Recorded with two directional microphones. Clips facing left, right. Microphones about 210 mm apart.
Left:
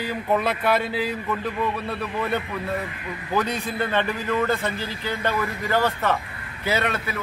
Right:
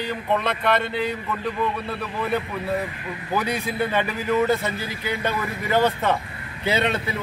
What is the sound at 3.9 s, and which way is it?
A man's voice, 10° right (ahead or behind).